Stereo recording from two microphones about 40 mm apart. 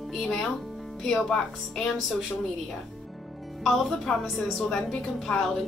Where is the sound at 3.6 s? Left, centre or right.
Centre.